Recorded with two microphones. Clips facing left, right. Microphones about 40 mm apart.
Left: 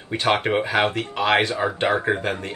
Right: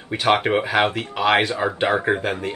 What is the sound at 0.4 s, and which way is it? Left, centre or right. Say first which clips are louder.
Speech: right 1 dB; centre.